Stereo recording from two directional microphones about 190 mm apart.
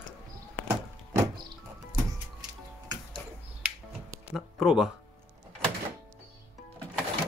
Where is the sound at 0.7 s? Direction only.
15° right (ahead or behind).